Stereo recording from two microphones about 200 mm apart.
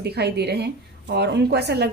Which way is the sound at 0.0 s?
55° right (ahead or behind).